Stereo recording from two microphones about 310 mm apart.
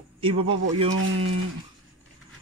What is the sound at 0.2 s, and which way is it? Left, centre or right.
Speech, centre.